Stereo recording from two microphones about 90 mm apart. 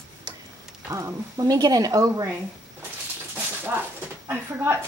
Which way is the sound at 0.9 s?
40° right (ahead or behind).